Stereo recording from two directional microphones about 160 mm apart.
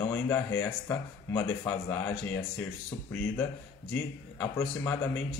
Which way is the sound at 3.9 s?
15° left (ahead or behind).